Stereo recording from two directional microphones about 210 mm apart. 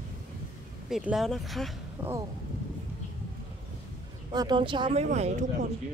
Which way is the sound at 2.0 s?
10° right (ahead or behind).